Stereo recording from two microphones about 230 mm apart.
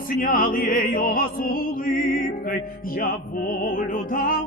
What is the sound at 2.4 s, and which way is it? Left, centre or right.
Music, left.